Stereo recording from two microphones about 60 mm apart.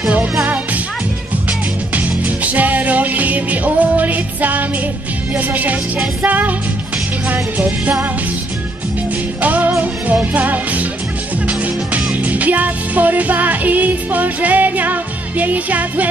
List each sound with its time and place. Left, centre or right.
2.0 s music: right
9.4 s music: right